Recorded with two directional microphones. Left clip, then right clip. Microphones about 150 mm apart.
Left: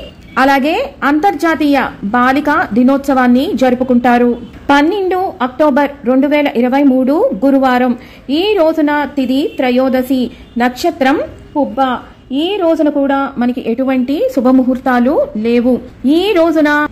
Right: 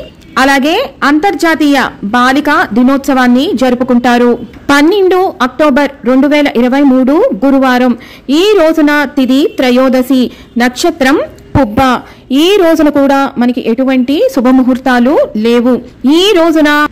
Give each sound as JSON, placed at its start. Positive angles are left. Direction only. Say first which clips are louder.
{"t": 0.3, "sound": "a woman's voice", "louder": "right 3 dB", "side_deg": -20}
{"t": 5.7, "sound": "a man's voice", "louder": "right 3 dB", "side_deg": -15}
{"t": 11.8, "sound": "a man's voice", "louder": "right 5 dB", "side_deg": -35}